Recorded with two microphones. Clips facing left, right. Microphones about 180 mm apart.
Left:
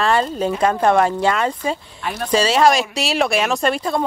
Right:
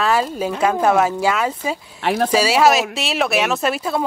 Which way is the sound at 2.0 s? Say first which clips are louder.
Right 9 dB; 65° right (ahead or behind).